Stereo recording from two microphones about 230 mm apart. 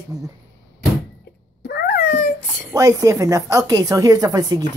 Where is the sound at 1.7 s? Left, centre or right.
Left.